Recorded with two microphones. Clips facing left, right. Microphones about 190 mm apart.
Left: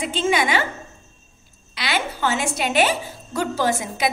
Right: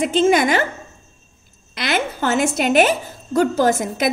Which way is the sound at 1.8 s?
45° right (ahead or behind).